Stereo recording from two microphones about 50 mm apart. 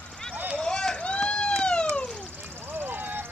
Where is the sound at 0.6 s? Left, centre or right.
Centre.